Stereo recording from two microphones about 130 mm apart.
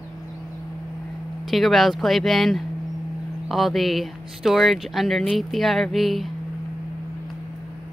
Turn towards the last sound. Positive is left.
turn(degrees=0)  # may be behind; listen again after turning